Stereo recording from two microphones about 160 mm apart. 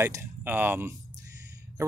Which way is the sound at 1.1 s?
20° right (ahead or behind).